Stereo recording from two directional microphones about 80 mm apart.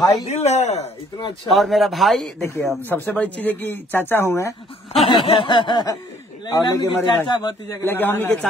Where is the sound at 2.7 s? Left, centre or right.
Left.